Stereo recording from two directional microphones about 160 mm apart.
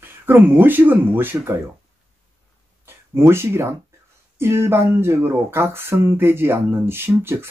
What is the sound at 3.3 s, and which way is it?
Speech, 15° right (ahead or behind).